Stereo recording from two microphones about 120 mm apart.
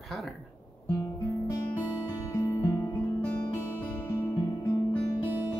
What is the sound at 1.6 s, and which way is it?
Music, 20° left (ahead or behind).